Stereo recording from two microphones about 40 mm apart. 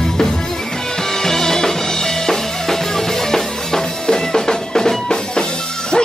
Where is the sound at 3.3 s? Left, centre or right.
Centre.